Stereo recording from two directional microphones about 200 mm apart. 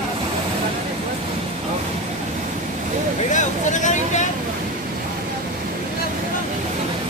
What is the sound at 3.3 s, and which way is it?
Speech, 40° left (ahead or behind).